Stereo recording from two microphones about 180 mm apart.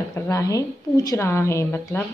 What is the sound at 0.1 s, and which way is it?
A woman's voice, 15° left (ahead or behind).